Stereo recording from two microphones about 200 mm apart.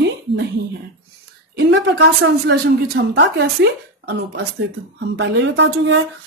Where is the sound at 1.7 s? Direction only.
60° right (ahead or behind).